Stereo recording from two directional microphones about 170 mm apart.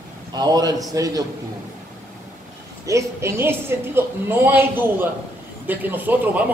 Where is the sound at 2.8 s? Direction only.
15° right (ahead or behind).